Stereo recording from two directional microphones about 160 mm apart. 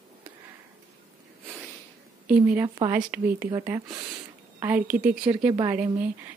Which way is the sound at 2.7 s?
25° right (ahead or behind).